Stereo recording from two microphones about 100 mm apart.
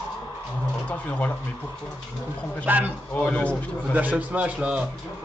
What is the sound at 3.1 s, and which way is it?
Speech, 15° left (ahead or behind).